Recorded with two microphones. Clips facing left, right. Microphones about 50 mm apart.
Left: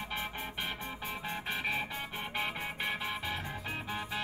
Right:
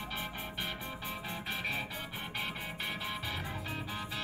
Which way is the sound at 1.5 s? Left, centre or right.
Centre.